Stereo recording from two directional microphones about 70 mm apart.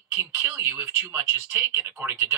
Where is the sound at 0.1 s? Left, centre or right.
Right.